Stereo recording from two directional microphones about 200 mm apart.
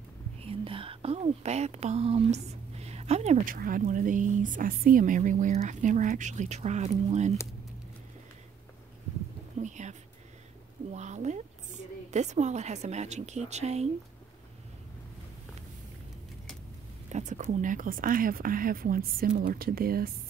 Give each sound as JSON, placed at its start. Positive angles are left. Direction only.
{"t": 0.4, "sound": "a woman's voice", "side_deg": -30}
{"t": 9.6, "sound": "a sound", "side_deg": -35}
{"t": 10.9, "sound": "a woman's voice", "side_deg": -35}
{"t": 17.1, "sound": "speech", "side_deg": -35}